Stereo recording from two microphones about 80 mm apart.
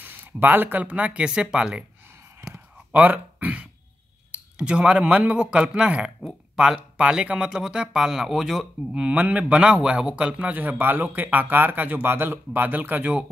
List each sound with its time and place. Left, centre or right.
0.0 s speech: right
2.9 s speech: right